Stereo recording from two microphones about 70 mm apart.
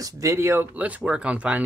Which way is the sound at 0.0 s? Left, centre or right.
Right.